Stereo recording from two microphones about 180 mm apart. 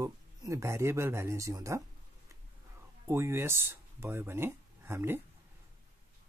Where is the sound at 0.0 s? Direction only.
15° right (ahead or behind).